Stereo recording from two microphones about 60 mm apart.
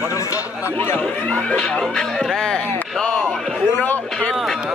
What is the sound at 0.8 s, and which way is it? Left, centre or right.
Speech, left.